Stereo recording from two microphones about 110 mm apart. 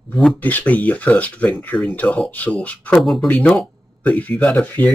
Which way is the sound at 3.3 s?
15° left (ahead or behind).